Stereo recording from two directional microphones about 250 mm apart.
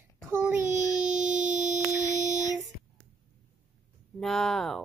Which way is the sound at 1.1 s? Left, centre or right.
Centre.